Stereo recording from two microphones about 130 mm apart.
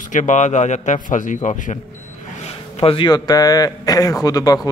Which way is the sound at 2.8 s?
45° left (ahead or behind).